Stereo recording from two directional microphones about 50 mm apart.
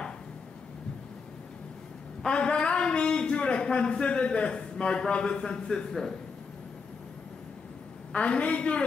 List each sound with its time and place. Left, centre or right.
2.2 s a man's voice: centre
8.1 s a woman's voice: left